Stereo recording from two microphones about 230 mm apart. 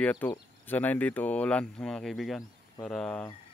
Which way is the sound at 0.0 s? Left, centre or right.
Centre.